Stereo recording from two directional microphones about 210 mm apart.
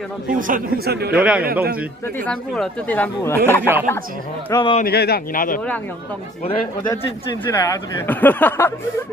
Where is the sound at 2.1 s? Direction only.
5° left (ahead or behind).